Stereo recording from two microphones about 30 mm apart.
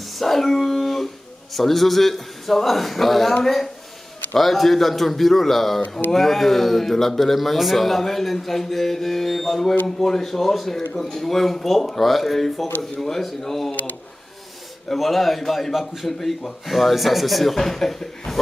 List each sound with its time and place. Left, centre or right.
0.0 s a sound: centre
0.6 s dog: centre
1.5 s a man's voice: centre
5.8 s mantra: left
6.1 s a man's voice: centre
15.0 s a man's voice: centre